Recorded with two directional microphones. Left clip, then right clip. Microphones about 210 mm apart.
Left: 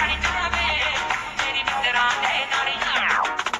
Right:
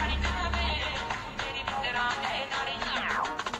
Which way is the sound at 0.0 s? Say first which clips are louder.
Left 9 dB; 50° left (ahead or behind).